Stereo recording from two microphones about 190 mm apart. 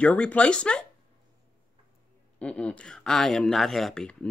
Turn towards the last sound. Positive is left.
turn(degrees=5)  # may be behind; listen again after turning